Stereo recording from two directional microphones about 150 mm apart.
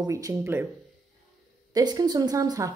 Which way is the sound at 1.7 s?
25° right (ahead or behind).